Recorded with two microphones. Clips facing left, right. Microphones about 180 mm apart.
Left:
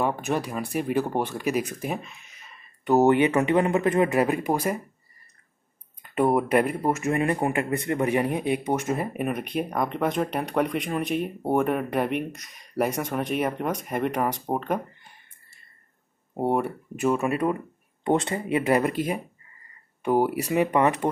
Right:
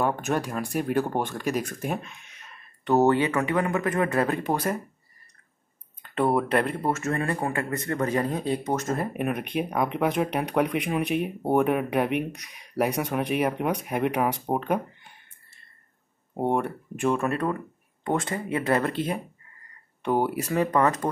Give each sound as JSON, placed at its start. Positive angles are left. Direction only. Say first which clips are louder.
{"t": 0.0, "sound": "speech", "louder": "even", "side_deg": 0}
{"t": 6.1, "sound": "speech", "louder": "left 2 dB", "side_deg": 10}
{"t": 16.3, "sound": "speech", "louder": "left 1 dB", "side_deg": 5}
{"t": 18.0, "sound": "speech", "louder": "left 3 dB", "side_deg": 25}